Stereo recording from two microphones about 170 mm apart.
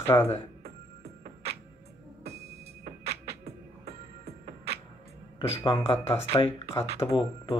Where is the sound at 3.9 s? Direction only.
40° right (ahead or behind).